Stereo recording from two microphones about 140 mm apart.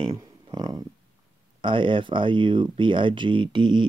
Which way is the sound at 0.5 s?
25° right (ahead or behind).